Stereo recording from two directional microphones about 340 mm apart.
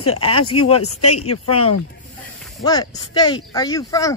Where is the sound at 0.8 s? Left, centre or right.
Left.